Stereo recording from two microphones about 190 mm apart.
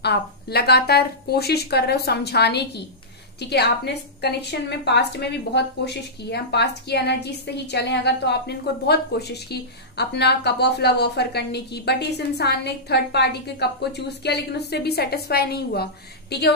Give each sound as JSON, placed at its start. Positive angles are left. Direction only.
{"t": 0.0, "sound": "a woman's voice", "side_deg": 60}